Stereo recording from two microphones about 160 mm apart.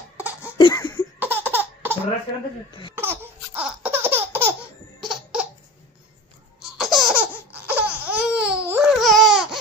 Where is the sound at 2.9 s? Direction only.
15° right (ahead or behind).